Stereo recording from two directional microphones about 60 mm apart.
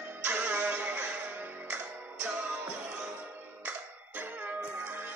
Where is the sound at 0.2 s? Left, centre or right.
Right.